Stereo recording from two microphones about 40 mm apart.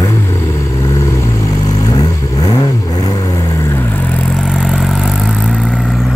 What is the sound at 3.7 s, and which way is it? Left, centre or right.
Vehicle, left.